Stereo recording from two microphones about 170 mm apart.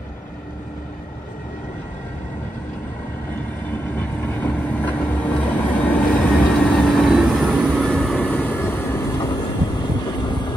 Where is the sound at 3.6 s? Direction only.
10° left (ahead or behind).